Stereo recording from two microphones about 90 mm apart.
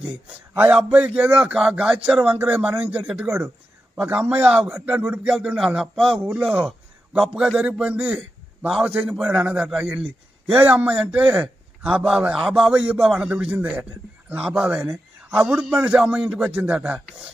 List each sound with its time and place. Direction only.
0.9 s a man's voice: 15° right (ahead or behind)
3.3 s speech: 30° right (ahead or behind)
4.0 s a man's voice: 20° right (ahead or behind)
4.6 s a man's voice: 30° right (ahead or behind)
5.3 s a man's voice: 5° right (ahead or behind)
8.0 s a man's voice: 5° right (ahead or behind)
16.6 s speech: 20° right (ahead or behind)